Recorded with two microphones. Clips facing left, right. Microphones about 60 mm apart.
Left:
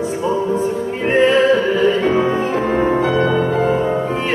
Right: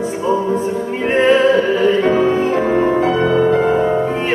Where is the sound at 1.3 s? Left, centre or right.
Centre.